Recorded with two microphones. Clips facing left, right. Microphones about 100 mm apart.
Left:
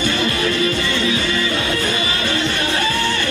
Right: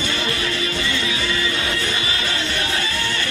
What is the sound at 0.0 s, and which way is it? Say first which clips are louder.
Music: left 5 dB; 45° left (ahead or behind).